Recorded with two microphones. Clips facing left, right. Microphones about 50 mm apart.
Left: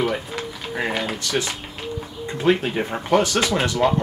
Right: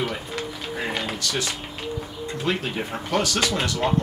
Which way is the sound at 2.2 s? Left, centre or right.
Left.